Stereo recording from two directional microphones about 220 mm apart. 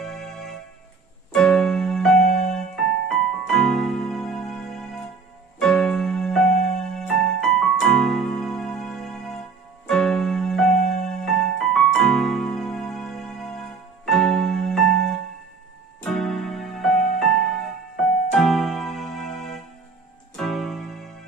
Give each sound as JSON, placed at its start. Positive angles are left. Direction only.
{"t": 0.0, "sound": "organ", "side_deg": 0}
{"t": 1.3, "sound": "music", "side_deg": 0}